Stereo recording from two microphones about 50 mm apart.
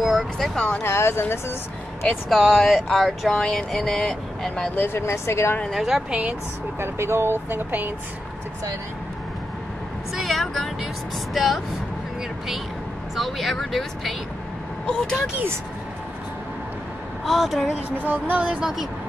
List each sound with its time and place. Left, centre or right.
0.0 s a sound: centre
0.6 s speech: centre
0.8 s speech: left
2.2 s speech: centre
4.7 s speech: left
5.7 s a woman's voice: centre
6.8 s speech: right
10.1 s vehicle: centre
11.3 s speech: centre
13.1 s speech: centre
17.2 s a woman's voice: centre
18.0 s speech: right
18.6 s a woman's voice: centre